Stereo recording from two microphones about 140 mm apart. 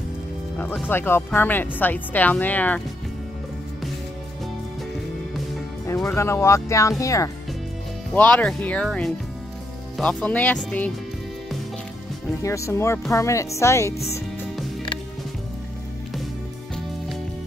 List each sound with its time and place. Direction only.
0.8 s speech: 15° left (ahead or behind)
6.1 s speech: 20° left (ahead or behind)
8.1 s speech: 10° left (ahead or behind)
12.4 s speech: 20° left (ahead or behind)